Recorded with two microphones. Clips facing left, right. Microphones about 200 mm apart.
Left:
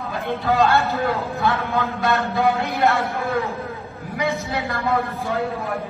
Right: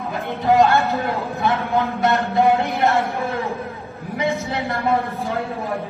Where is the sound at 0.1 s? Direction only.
15° right (ahead or behind).